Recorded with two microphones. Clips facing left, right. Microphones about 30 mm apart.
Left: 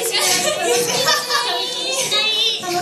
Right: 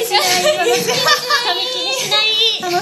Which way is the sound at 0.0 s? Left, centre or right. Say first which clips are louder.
Right 5 dB; centre.